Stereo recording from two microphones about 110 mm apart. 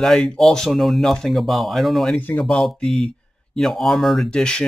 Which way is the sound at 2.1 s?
15° left (ahead or behind).